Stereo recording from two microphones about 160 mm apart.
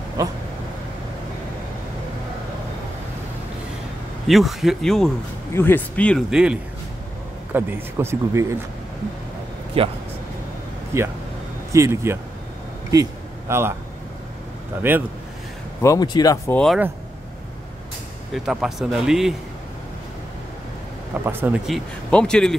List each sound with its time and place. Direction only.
4.3 s speech: centre (ahead or behind)
5.5 s speech: 15° left (ahead or behind)
6.3 s speech: 5° right (ahead or behind)
9.8 s speech: 35° right (ahead or behind)
10.9 s speech: 15° right (ahead or behind)
12.9 s a sound: 20° right (ahead or behind)
14.8 s speech: 15° right (ahead or behind)
15.8 s speech: 20° left (ahead or behind)
16.5 s speech: centre (ahead or behind)
18.3 s speech: 5° right (ahead or behind)
21.1 s speech: 10° right (ahead or behind)
21.6 s speech: centre (ahead or behind)